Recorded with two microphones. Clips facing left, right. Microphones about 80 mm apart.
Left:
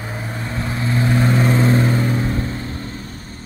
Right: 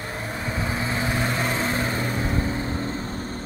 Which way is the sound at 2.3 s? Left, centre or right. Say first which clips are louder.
Even; centre.